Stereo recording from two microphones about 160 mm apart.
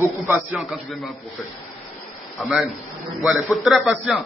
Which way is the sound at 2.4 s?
Centre (ahead or behind).